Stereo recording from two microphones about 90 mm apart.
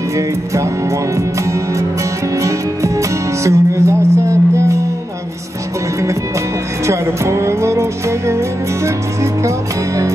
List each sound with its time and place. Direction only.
1.1 s music: 35° right (ahead or behind)
6.9 s music: 35° right (ahead or behind)